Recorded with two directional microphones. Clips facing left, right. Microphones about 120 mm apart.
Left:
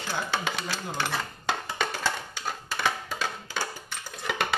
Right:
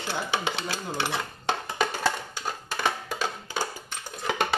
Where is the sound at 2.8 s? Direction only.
45° right (ahead or behind).